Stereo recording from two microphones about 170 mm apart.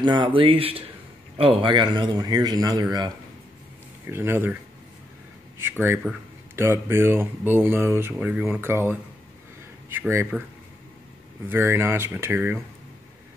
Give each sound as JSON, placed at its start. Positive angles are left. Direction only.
{"t": 0.0, "sound": "a man's voice", "side_deg": -30}
{"t": 4.1, "sound": "speech", "side_deg": -15}
{"t": 5.6, "sound": "speech", "side_deg": -10}
{"t": 11.4, "sound": "speech", "side_deg": -15}